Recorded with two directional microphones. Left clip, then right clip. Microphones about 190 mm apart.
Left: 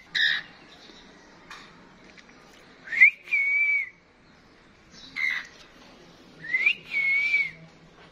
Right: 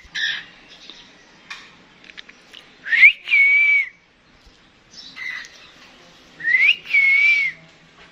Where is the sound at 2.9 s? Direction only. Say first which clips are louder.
Right 7 dB; centre (ahead or behind).